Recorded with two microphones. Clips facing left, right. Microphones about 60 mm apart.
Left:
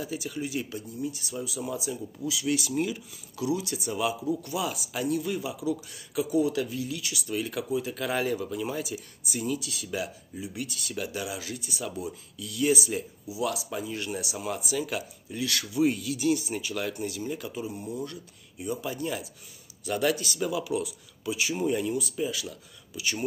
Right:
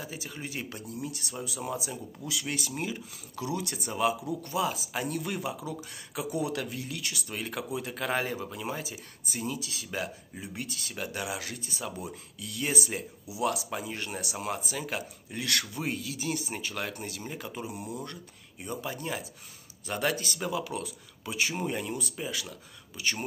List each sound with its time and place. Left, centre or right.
0.0 s speech: right
0.9 s speech: right
2.7 s speech: right
3.5 s speech: right
5.0 s speech: right
6.3 s speech: right
15.3 s speech: right
15.8 s speech: right
17.6 s speech: right
18.0 s speech: right